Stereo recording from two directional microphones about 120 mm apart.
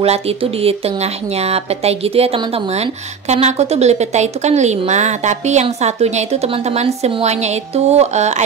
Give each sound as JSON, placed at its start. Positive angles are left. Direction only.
{"t": 0.0, "sound": "a woman's voice", "side_deg": -55}
{"t": 3.3, "sound": "a woman's voice", "side_deg": -65}